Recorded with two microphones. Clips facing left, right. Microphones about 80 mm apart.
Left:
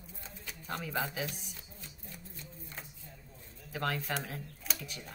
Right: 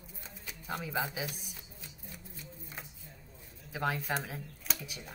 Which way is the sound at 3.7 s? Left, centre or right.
Centre.